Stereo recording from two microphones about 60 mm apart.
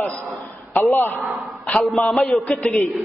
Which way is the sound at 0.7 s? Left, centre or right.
Left.